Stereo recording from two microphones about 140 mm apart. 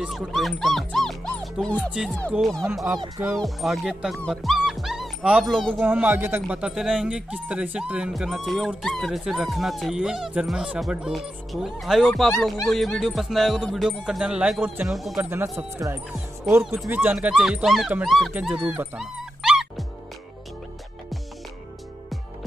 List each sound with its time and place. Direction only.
0.0 s speech: centre (ahead or behind)
1.9 s speech: 5° right (ahead or behind)
15.1 s speech: 20° right (ahead or behind)
18.7 s dog: 5° right (ahead or behind)